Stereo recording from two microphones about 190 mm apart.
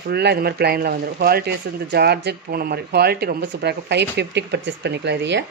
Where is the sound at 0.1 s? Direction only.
60° right (ahead or behind).